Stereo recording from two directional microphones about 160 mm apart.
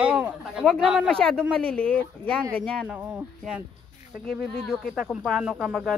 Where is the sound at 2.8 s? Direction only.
10° right (ahead or behind).